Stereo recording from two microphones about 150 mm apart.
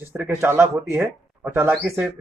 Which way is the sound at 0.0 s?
15° right (ahead or behind).